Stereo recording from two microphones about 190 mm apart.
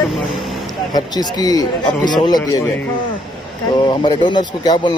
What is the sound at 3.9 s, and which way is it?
Speech, 25° left (ahead or behind).